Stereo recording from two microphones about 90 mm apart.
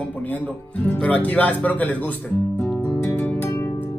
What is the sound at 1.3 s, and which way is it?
Speech, 15° left (ahead or behind).